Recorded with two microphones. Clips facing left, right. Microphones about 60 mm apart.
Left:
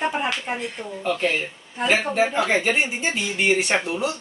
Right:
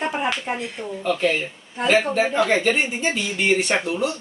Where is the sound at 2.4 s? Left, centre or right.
Centre.